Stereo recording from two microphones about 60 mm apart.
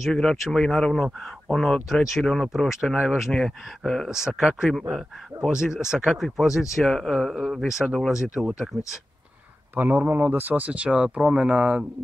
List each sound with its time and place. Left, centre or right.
0.0 s speech: centre
3.8 s speech: centre
4.1 s speech: centre
9.8 s speech: right